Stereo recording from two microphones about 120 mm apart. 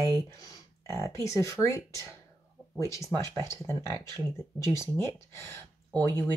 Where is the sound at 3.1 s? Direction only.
25° left (ahead or behind).